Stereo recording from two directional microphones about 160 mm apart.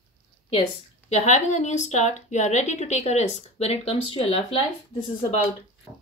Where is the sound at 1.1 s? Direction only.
45° left (ahead or behind).